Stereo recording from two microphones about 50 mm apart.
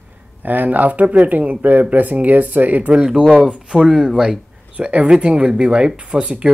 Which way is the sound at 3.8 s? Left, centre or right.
Centre.